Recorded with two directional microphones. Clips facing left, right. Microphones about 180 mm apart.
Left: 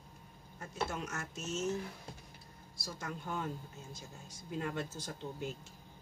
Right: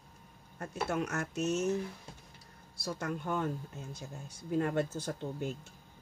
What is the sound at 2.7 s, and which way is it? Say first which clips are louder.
Speech: right 7 dB; 65° right (ahead or behind).